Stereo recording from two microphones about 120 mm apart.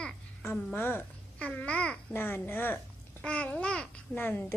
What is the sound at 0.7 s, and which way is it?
A child's voice, 15° left (ahead or behind).